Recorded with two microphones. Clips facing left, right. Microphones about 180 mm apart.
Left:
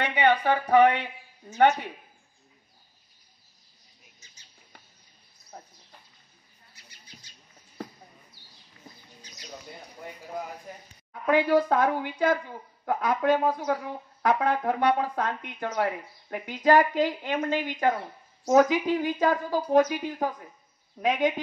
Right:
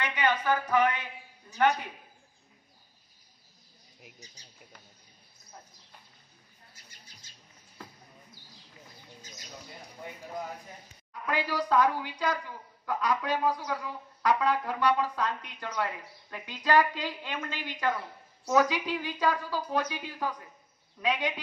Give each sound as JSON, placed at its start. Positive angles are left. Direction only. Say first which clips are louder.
{"t": 0.0, "sound": "speech", "louder": "left 6 dB", "side_deg": 65}
{"t": 4.4, "sound": "a sound", "louder": "right 5 dB", "side_deg": -35}
{"t": 6.7, "sound": "bird", "louder": "left 6 dB", "side_deg": -45}
{"t": 11.2, "sound": "a woman's voice", "louder": "left 9 dB", "side_deg": 55}